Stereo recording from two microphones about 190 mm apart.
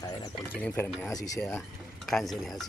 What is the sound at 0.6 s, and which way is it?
Speech, 5° left (ahead or behind).